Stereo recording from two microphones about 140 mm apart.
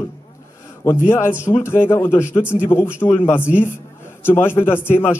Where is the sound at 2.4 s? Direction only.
10° right (ahead or behind).